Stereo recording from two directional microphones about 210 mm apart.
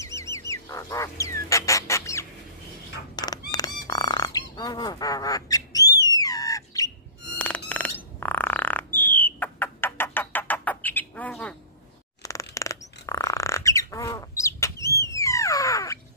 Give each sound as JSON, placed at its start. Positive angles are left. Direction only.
{"t": 0.0, "sound": "bird", "side_deg": 15}
{"t": 3.2, "sound": "fowl", "side_deg": 20}
{"t": 3.5, "sound": "frog", "side_deg": 20}
{"t": 6.1, "sound": "bird", "side_deg": 15}
{"t": 7.3, "sound": "a sound", "side_deg": 5}
{"t": 12.2, "sound": "bird", "side_deg": 15}